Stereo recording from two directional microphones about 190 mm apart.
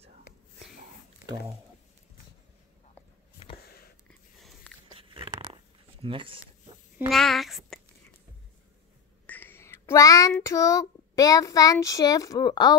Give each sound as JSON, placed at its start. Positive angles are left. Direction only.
{"t": 4.9, "sound": "a sound", "side_deg": -25}
{"t": 6.0, "sound": "speech", "side_deg": -30}
{"t": 7.1, "sound": "a child's voice", "side_deg": 0}
{"t": 9.2, "sound": "child singing", "side_deg": 10}